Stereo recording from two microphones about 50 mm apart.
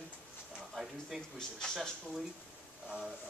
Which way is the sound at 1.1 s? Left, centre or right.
Centre.